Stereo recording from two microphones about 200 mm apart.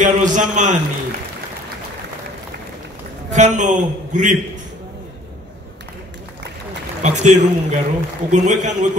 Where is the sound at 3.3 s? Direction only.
35° right (ahead or behind).